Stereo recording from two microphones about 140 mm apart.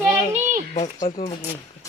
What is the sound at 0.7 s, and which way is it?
Speech, 50° left (ahead or behind).